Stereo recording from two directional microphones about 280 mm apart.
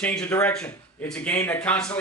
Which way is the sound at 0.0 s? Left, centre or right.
Centre.